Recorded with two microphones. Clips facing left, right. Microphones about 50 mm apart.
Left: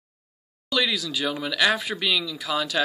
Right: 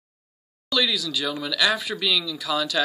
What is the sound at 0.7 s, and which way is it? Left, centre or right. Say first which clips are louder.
Speech: right 1 dB; left.